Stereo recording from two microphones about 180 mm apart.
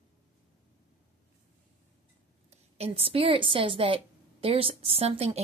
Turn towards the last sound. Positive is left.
turn(degrees=-35)  # may be behind; listen again after turning